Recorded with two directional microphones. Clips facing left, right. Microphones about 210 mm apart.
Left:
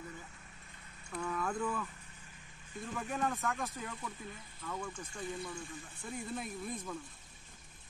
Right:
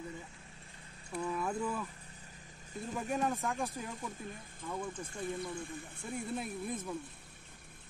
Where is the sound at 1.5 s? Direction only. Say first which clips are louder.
Even; 10° right (ahead or behind).